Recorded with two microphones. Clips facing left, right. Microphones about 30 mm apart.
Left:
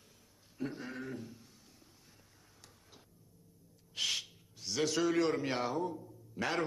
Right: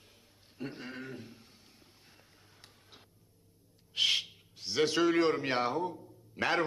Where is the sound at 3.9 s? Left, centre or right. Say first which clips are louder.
Right 7 dB; right.